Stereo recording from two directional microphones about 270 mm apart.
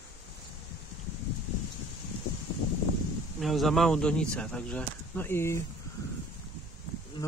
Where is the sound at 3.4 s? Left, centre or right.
Centre.